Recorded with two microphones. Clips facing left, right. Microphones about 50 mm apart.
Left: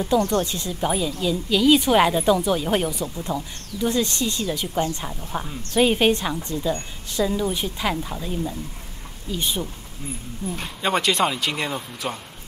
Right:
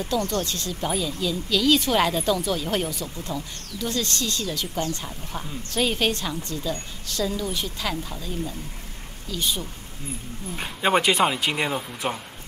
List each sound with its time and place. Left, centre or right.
0.2 s a woman's voice: centre
10.5 s speech: centre